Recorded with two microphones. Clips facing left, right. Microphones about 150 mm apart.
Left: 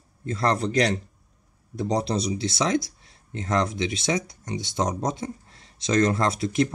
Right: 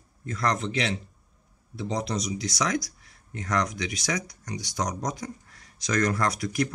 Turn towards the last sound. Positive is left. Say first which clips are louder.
# left 4 dB
turn(degrees=25)  # may be behind; listen again after turning